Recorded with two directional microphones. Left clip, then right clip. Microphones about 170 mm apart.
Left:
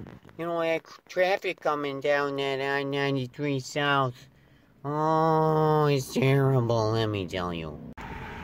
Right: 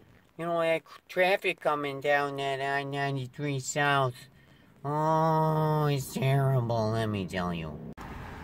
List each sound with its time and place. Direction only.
0.4 s speech: 10° left (ahead or behind)
2.3 s speech: 35° left (ahead or behind); by 7.7 s 20° left (ahead or behind)